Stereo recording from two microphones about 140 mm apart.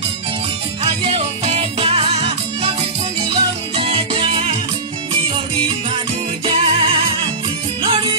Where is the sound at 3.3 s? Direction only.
40° right (ahead or behind).